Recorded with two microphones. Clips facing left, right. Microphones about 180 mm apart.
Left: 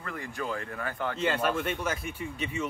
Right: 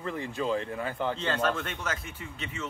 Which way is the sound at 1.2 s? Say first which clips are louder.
Left 1 dB; 10° left (ahead or behind).